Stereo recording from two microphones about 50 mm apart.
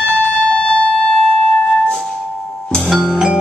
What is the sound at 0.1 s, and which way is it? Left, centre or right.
Music, centre.